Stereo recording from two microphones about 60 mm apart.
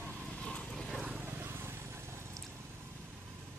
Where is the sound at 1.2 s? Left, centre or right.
Right.